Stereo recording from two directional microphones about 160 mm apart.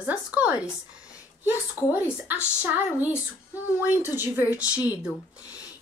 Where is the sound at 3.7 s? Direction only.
15° right (ahead or behind).